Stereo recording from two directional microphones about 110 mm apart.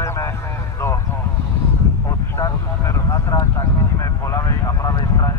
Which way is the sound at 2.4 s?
30° left (ahead or behind).